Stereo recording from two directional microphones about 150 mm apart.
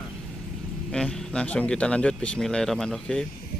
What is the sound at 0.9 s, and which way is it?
Speech, 5° left (ahead or behind).